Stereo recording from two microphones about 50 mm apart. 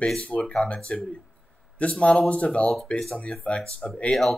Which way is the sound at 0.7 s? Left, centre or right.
Left.